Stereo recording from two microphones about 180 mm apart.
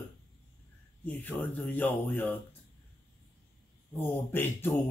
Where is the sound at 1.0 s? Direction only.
10° left (ahead or behind).